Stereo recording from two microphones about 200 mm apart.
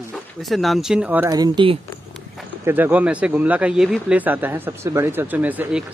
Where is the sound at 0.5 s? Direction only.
Centre (ahead or behind).